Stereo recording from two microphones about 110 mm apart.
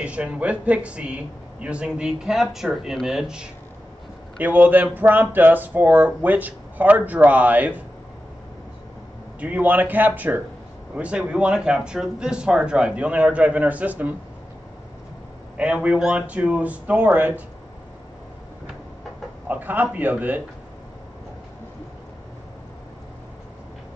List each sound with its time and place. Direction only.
0.0 s speech: 10° right (ahead or behind)
9.4 s speech: 15° right (ahead or behind)
15.5 s speech: 10° right (ahead or behind)
19.4 s speech: 15° right (ahead or behind)